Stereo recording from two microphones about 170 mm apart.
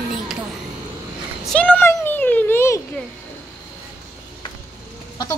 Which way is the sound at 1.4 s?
5° left (ahead or behind).